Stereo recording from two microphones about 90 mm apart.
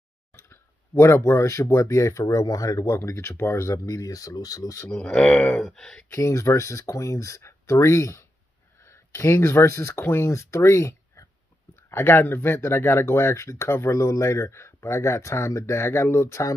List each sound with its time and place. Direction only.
0.3 s speech: 30° left (ahead or behind)
4.9 s speech: 10° left (ahead or behind)
6.1 s speech: 35° left (ahead or behind)